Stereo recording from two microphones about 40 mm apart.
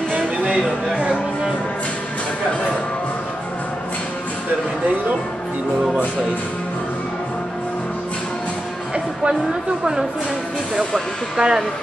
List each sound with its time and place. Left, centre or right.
0.9 s music: right
9.3 s a woman's voice: centre
11.3 s speech: right